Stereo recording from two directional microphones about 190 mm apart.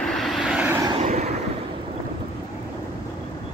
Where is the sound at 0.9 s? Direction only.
35° right (ahead or behind).